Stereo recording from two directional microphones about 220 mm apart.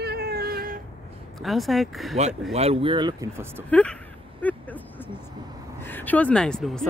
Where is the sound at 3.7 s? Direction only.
5° left (ahead or behind).